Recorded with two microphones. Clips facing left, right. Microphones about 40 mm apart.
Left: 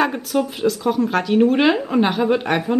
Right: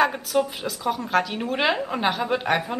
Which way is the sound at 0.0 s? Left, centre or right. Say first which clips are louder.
Left 2 dB; centre.